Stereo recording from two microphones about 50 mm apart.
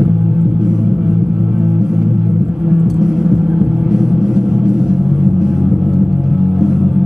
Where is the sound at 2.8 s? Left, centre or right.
Centre.